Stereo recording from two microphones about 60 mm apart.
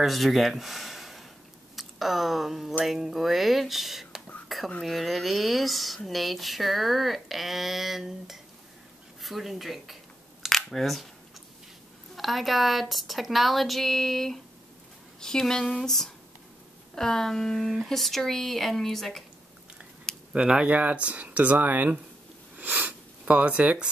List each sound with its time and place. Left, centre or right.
0.0 s speech: centre
4.5 s a sound: centre
4.8 s speech: centre
12.2 s a woman's voice: centre
20.3 s speech: centre
22.6 s sniff: right